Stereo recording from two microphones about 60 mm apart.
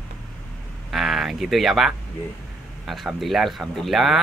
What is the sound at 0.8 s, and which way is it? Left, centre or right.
Speech, centre.